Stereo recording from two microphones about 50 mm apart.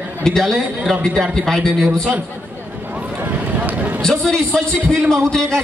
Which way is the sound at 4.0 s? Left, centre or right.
Centre.